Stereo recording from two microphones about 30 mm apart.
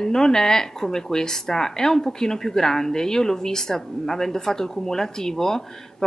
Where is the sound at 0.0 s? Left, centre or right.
Left.